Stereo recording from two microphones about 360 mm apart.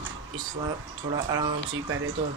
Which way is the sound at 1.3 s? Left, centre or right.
Centre.